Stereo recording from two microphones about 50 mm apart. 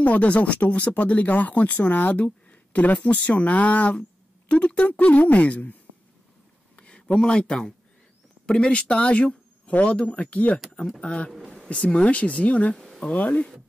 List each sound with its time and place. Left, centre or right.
0.0 s speech: left
6.8 s a sound: centre
7.2 s speech: centre
11.3 s a sound: centre
11.7 s speech: left
12.7 s speech: centre
13.1 s speech: left